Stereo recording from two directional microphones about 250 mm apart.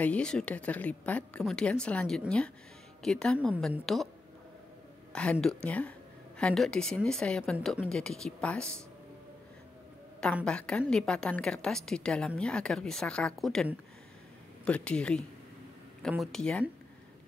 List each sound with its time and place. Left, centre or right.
0.0 s a woman's voice: centre
5.1 s a woman's voice: centre
10.2 s a woman's voice: centre